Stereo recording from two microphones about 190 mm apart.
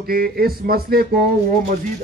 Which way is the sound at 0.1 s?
50° right (ahead or behind).